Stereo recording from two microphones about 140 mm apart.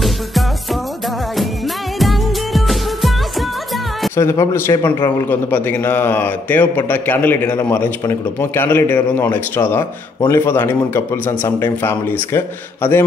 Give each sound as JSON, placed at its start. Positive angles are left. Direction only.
{"t": 2.0, "sound": "music", "side_deg": 0}
{"t": 4.2, "sound": "a man's voice", "side_deg": 20}